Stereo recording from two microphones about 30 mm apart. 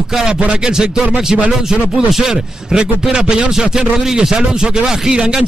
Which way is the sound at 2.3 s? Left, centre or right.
Right.